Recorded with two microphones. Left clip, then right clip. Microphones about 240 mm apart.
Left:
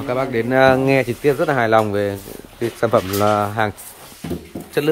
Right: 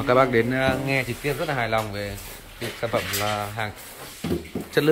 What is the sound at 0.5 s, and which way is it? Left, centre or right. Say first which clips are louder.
Speech: left 10 dB; left.